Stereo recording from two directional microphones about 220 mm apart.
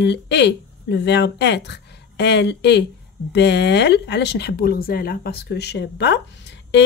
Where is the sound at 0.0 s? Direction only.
50° left (ahead or behind).